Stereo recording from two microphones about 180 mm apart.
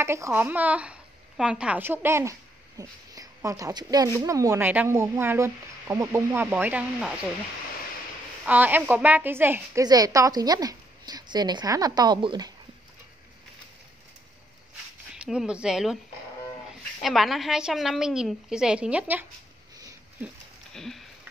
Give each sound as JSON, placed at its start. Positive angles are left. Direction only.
{"t": 0.0, "sound": "speech", "side_deg": -15}
{"t": 8.5, "sound": "a woman's voice", "side_deg": -10}
{"t": 15.1, "sound": "a woman's voice", "side_deg": -5}
{"t": 17.0, "sound": "a woman's voice", "side_deg": 0}
{"t": 20.7, "sound": "a sound", "side_deg": 0}